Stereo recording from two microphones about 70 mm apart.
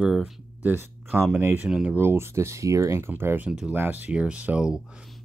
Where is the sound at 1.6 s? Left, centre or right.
Centre.